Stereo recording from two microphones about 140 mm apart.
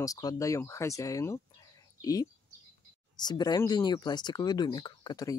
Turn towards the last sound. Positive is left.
turn(degrees=30)  # may be behind; listen again after turning